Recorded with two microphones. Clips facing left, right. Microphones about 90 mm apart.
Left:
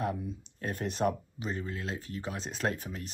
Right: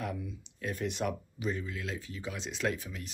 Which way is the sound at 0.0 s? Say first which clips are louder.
Left 4 dB; 35° left (ahead or behind).